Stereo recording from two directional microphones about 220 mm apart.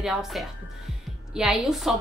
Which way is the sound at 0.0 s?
Centre (ahead or behind).